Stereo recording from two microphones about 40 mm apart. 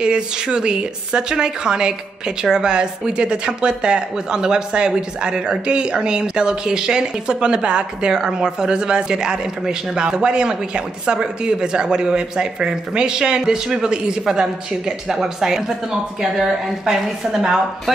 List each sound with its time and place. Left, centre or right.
0.0 s a woman's voice: right